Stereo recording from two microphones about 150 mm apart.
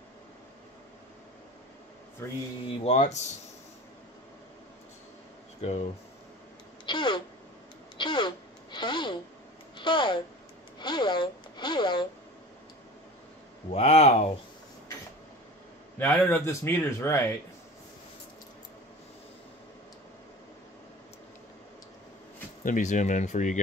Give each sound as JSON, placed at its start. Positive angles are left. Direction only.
{"t": 2.2, "sound": "speech", "side_deg": 15}
{"t": 2.8, "sound": "speech", "side_deg": 45}
{"t": 5.6, "sound": "speech", "side_deg": 45}
{"t": 6.9, "sound": "speech", "side_deg": 30}
{"t": 8.0, "sound": "a sound", "side_deg": 30}
{"t": 9.8, "sound": "speech", "side_deg": 30}
{"t": 10.8, "sound": "a sound", "side_deg": 30}
{"t": 13.7, "sound": "speech", "side_deg": 45}
{"t": 16.0, "sound": "speech", "side_deg": 10}
{"t": 22.6, "sound": "speech", "side_deg": 55}